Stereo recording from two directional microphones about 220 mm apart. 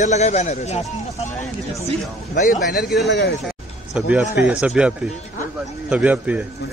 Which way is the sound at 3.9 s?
5° right (ahead or behind).